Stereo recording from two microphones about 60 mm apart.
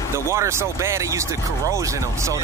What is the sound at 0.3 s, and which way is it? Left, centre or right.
Speech, right.